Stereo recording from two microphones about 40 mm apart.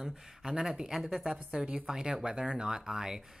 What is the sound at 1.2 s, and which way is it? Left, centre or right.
A woman's voice, centre.